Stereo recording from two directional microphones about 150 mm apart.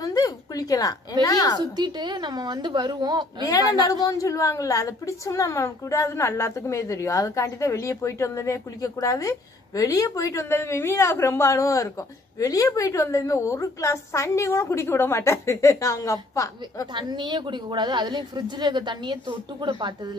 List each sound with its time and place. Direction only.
0.0 s a sound: 25° left (ahead or behind)
1.2 s a woman's voice: 25° left (ahead or behind)
1.8 s a woman's voice: 30° right (ahead or behind)
3.4 s a woman's voice: 25° left (ahead or behind)
16.9 s a woman's voice: 30° right (ahead or behind)